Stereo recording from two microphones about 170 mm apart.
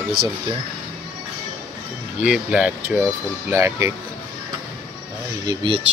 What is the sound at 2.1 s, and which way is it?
Speech, 5° right (ahead or behind).